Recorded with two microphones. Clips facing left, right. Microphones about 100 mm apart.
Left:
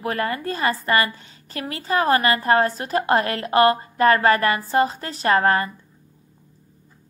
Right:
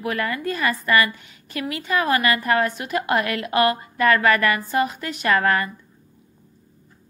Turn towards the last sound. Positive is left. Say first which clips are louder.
# left 2 dB
turn(degrees=30)  # may be behind; listen again after turning